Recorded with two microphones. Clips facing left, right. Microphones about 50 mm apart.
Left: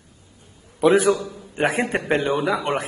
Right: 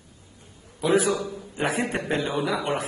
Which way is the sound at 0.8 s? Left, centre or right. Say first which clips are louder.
Left 5 dB; left.